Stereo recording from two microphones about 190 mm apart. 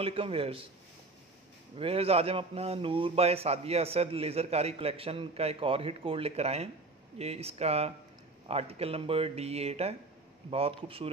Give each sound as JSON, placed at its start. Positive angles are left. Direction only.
{"t": 0.0, "sound": "a man's voice", "side_deg": -30}
{"t": 1.8, "sound": "a man's voice", "side_deg": -30}